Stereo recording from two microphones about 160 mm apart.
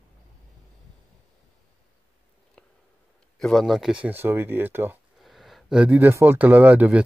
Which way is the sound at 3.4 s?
Centre (ahead or behind).